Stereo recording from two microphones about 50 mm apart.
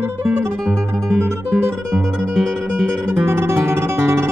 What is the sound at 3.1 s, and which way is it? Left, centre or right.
Guitar, right.